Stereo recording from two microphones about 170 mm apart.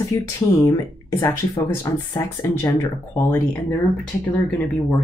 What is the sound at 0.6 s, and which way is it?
Speech, 15° left (ahead or behind).